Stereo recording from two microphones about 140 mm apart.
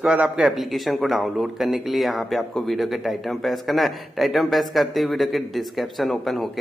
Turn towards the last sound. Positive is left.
turn(degrees=0)  # may be behind; listen again after turning